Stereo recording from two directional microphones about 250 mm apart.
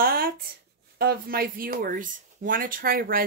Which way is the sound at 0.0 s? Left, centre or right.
Right.